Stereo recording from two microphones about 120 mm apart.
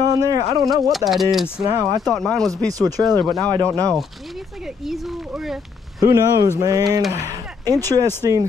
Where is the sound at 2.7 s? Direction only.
30° right (ahead or behind).